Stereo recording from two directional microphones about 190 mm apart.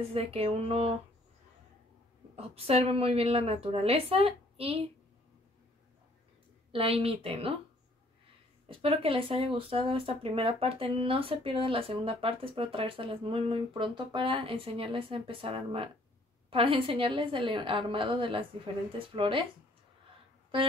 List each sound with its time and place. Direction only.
0.1 s a woman's voice: 30° right (ahead or behind)
2.3 s a woman's voice: 30° right (ahead or behind)
6.7 s speech: 30° right (ahead or behind)
8.6 s speech: 30° right (ahead or behind)